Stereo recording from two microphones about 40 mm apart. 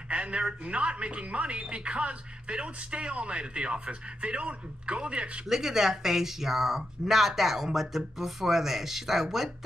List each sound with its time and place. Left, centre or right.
0.1 s speech: right
5.5 s speech: centre